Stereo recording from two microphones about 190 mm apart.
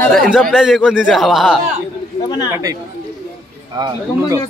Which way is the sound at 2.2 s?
20° left (ahead or behind).